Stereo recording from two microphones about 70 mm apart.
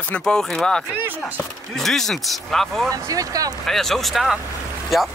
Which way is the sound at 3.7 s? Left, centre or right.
Centre.